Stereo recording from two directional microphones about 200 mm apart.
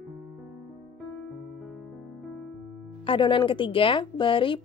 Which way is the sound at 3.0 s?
25° left (ahead or behind).